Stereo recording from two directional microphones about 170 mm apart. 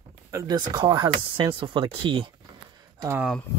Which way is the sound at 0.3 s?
20° right (ahead or behind).